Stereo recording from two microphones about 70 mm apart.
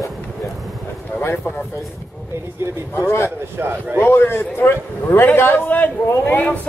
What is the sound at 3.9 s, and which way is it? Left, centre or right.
A man's voice, left.